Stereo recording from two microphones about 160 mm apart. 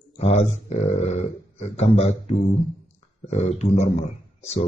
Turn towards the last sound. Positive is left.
turn(degrees=40)  # may be behind; listen again after turning